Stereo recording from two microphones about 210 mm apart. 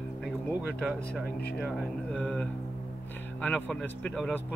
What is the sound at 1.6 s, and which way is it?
Speech, centre (ahead or behind).